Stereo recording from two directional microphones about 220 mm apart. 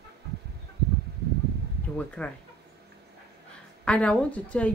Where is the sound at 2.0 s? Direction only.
5° left (ahead or behind).